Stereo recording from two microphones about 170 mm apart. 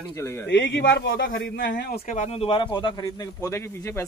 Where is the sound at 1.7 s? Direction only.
50° left (ahead or behind).